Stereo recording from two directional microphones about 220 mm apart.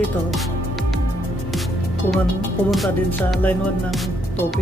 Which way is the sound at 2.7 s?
5° left (ahead or behind).